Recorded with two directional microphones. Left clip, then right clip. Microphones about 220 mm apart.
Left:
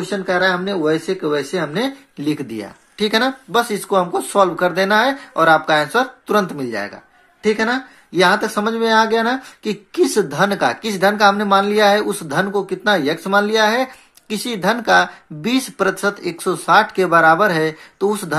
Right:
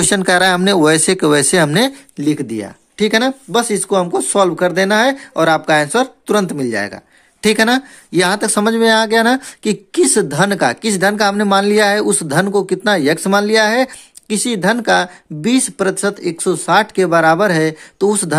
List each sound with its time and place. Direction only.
0.1 s speech: 45° right (ahead or behind)
2.1 s speech: 30° right (ahead or behind)